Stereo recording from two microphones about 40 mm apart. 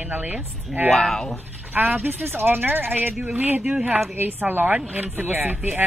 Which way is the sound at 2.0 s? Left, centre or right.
Right.